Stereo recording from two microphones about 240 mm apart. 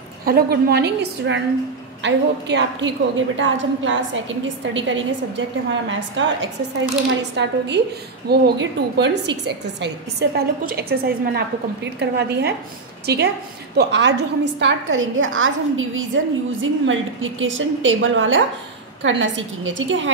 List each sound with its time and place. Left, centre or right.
0.2 s a woman's voice: right